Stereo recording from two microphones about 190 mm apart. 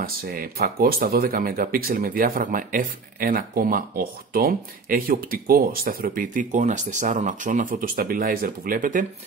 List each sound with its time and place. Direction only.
0.0 s speech: 50° right (ahead or behind)